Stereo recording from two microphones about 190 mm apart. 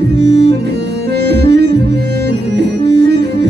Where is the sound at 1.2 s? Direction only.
60° right (ahead or behind).